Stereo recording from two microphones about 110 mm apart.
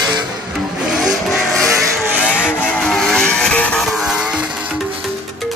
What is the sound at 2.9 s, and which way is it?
Vehicle, 5° left (ahead or behind).